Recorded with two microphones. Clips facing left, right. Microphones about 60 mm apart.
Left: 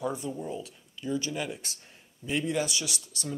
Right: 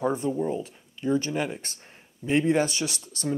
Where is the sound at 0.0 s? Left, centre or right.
Right.